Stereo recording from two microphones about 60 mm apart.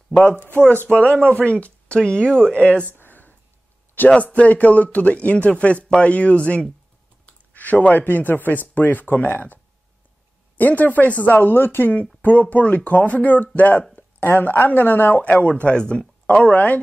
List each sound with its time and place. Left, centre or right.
0.1 s speech: left
0.4 s speech: right
0.8 s speech: left
3.0 s a sound: left
4.1 s speech: left
10.6 s speech: left